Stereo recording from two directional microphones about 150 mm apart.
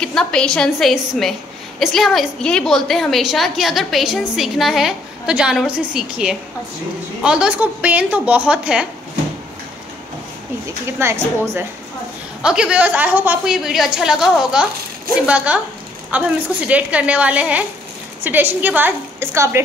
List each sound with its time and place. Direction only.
0.0 s a woman's voice: 5° left (ahead or behind)
10.9 s a woman's voice: 15° right (ahead or behind)
12.4 s a woman's voice: 5° right (ahead or behind)